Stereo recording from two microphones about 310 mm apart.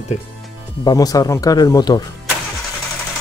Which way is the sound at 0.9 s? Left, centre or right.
Centre.